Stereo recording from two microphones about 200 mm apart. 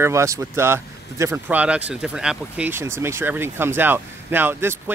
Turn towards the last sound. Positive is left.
turn(degrees=-10)  # may be behind; listen again after turning